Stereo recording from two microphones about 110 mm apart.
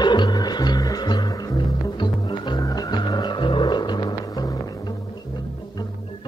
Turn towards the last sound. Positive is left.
turn(degrees=40)  # may be behind; listen again after turning